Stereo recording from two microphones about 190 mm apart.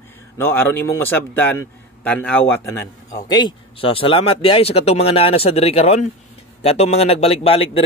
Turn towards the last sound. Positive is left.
turn(degrees=30)  # may be behind; listen again after turning